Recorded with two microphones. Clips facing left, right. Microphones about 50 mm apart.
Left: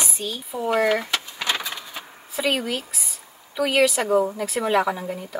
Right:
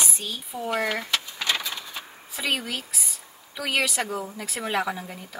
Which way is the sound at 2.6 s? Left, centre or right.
Centre.